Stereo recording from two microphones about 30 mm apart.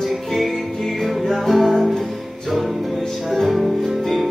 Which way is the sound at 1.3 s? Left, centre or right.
Centre.